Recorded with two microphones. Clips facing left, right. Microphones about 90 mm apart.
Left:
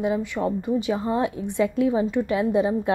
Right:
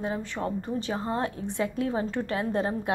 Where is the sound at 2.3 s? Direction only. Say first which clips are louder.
Left 6 dB; 45° right (ahead or behind).